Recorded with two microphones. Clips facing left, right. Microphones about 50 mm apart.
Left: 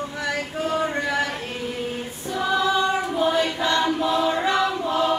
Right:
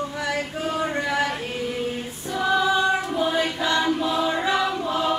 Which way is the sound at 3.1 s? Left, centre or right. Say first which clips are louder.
Left 2 dB; centre.